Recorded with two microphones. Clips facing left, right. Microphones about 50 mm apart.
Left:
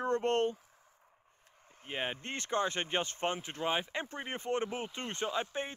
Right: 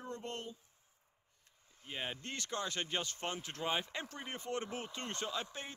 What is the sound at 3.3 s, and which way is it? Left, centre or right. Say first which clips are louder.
Speech: left 4 dB; centre.